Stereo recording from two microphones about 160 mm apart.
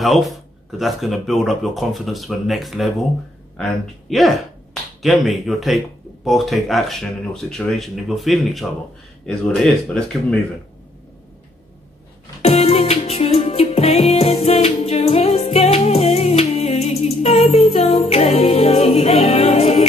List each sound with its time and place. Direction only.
0.0 s speech: centre (ahead or behind)
4.1 s speech: centre (ahead or behind)
12.4 s music: 40° left (ahead or behind)
17.2 s a capella: 40° left (ahead or behind)